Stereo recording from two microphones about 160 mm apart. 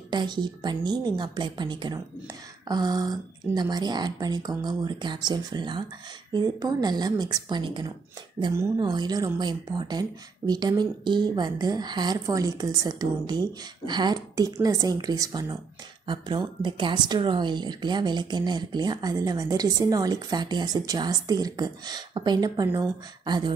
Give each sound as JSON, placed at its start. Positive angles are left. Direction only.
{"t": 0.1, "sound": "speech", "side_deg": -30}